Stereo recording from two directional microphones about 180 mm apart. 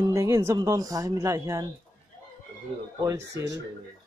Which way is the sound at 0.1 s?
15° right (ahead or behind).